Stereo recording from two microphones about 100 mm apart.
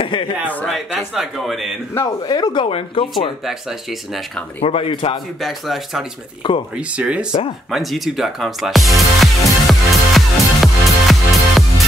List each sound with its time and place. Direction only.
0.0 s a man's voice: 60° left (ahead or behind)
0.7 s a man's voice: centre (ahead or behind)
2.2 s speech: 45° left (ahead or behind)
4.6 s speech: 75° left (ahead or behind)
5.4 s a man's voice: centre (ahead or behind)
6.4 s speech: 50° left (ahead or behind)
7.0 s speech: 10° right (ahead or behind)
7.7 s music: centre (ahead or behind)